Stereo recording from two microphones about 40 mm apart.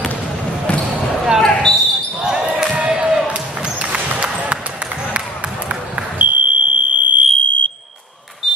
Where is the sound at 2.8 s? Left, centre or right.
Right.